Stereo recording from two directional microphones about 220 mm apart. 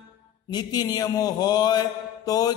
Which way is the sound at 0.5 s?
20° left (ahead or behind).